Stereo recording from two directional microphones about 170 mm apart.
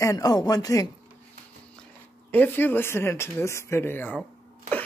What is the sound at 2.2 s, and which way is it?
Speech, 10° left (ahead or behind).